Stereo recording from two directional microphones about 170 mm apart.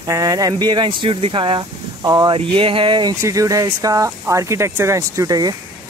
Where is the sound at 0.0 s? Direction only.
20° right (ahead or behind).